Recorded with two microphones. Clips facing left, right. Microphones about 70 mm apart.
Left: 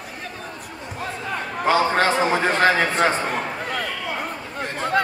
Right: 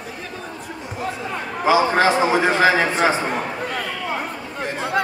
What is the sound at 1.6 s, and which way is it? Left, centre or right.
A man's voice, centre.